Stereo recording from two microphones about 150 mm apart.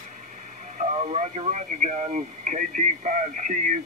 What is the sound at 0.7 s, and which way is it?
Speech, 50° right (ahead or behind).